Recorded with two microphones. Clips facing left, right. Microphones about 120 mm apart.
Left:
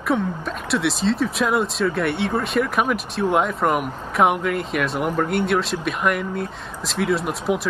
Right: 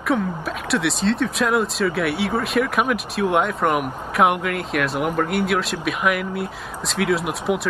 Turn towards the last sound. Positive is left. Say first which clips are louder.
# even
turn(degrees=0)  # may be behind; listen again after turning